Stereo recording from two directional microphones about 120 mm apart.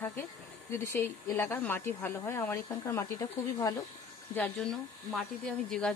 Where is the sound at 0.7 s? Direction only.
20° left (ahead or behind).